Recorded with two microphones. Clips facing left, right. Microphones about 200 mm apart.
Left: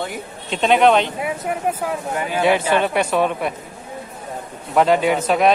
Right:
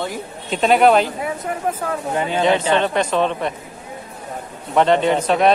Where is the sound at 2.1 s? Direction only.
25° right (ahead or behind).